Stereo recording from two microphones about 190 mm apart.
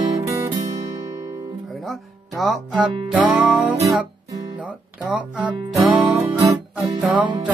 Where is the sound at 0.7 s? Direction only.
15° right (ahead or behind).